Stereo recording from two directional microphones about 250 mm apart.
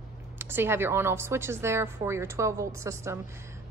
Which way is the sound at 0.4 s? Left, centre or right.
Centre.